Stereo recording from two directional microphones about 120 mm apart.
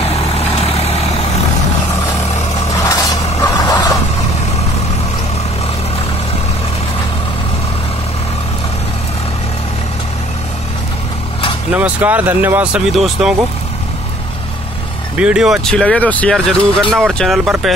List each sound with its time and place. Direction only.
0.1 s vehicle: 60° left (ahead or behind)
2.7 s vehicle: 30° left (ahead or behind)
11.7 s speech: 15° right (ahead or behind)
12.9 s speech: 5° right (ahead or behind)
15.1 s speech: 5° right (ahead or behind)
15.7 s speech: 10° left (ahead or behind)